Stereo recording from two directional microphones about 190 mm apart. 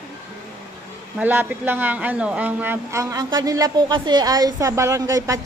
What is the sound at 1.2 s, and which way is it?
Speech, 10° right (ahead or behind).